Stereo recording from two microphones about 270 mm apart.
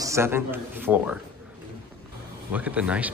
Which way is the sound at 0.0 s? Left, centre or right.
Centre.